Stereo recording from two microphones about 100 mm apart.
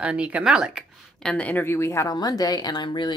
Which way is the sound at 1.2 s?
10° left (ahead or behind).